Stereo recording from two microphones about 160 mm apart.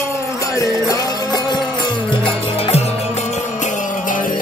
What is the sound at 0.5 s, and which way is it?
Music, 20° left (ahead or behind).